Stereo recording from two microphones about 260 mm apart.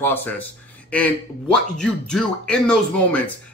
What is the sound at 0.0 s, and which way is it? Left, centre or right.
A man's voice, centre.